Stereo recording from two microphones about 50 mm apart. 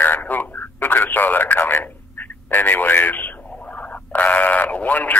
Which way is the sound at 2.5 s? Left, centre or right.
Left.